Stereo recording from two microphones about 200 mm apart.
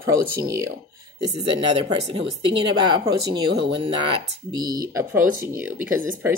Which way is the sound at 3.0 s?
25° right (ahead or behind).